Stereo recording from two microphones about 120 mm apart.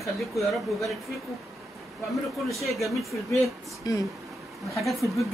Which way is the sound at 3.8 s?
35° left (ahead or behind).